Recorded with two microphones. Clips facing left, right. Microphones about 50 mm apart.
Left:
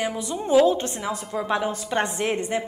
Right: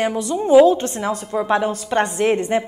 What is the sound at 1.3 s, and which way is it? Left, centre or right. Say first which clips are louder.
Speech: right 6 dB; centre.